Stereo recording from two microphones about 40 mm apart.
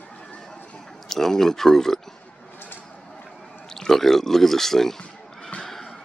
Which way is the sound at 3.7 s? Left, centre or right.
Centre.